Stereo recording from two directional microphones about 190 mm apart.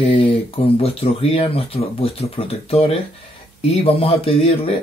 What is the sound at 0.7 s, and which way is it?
Speech, 30° left (ahead or behind).